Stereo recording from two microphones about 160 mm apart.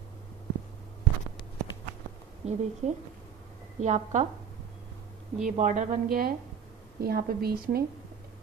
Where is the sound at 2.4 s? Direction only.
40° right (ahead or behind).